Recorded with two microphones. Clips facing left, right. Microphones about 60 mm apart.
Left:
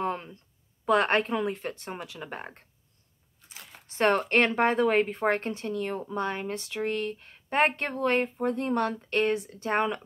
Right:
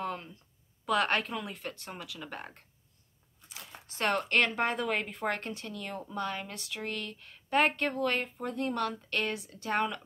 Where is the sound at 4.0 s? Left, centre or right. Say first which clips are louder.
Left 5 dB; left.